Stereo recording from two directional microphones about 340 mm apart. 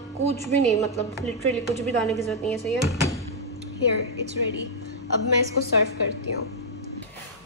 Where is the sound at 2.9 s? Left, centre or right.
Centre.